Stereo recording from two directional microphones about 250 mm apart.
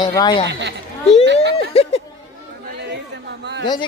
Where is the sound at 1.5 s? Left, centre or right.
Left.